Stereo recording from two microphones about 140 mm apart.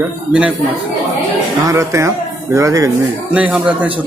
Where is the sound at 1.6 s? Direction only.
20° right (ahead or behind).